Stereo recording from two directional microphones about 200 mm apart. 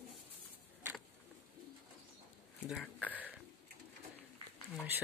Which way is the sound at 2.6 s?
5° right (ahead or behind).